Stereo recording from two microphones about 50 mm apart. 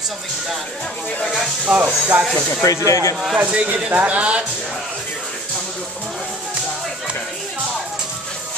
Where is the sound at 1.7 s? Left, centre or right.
Centre.